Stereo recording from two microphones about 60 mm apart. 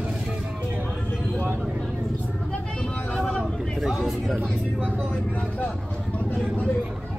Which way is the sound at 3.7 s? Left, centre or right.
Centre.